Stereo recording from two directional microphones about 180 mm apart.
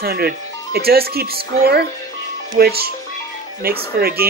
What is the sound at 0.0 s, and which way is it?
A woman's voice, 60° right (ahead or behind).